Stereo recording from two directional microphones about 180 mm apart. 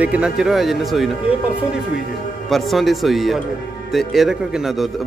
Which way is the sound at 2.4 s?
Centre (ahead or behind).